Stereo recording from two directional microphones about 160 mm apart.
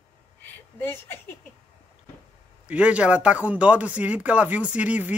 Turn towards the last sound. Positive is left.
turn(degrees=-10)  # may be behind; listen again after turning